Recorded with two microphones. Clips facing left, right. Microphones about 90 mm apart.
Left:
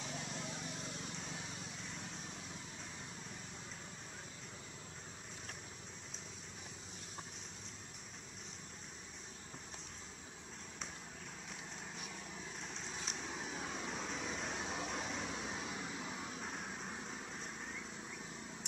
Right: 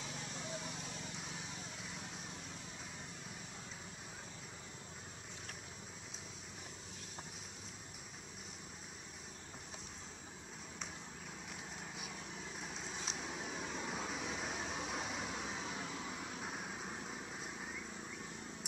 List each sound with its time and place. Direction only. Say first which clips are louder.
12.5 s vehicle: right 2 dB; 5° right (ahead or behind)